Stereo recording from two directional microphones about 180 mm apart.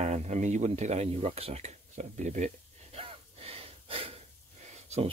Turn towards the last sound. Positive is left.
turn(degrees=-35)  # may be behind; listen again after turning